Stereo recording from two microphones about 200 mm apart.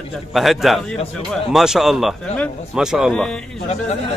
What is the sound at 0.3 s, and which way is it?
A man's voice, centre (ahead or behind).